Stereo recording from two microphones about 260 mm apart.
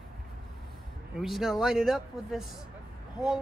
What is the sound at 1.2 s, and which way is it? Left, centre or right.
Speech, centre.